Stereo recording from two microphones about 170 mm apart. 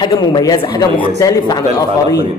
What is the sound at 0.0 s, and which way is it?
A man's voice, 25° left (ahead or behind).